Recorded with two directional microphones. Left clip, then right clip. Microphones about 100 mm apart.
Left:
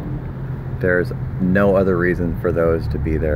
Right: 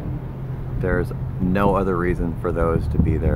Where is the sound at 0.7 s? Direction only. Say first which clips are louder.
Left 6 dB; 5° left (ahead or behind).